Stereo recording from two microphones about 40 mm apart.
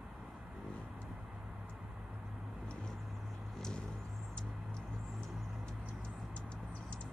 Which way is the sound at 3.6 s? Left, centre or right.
Centre.